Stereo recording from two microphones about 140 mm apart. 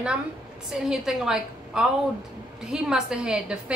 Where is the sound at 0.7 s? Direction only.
5° right (ahead or behind).